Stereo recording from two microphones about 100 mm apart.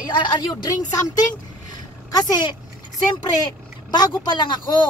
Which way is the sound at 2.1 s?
40° left (ahead or behind).